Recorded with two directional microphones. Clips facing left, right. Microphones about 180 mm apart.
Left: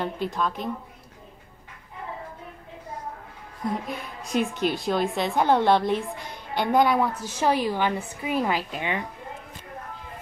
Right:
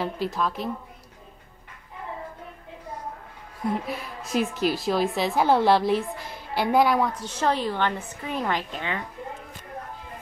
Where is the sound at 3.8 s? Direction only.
5° right (ahead or behind).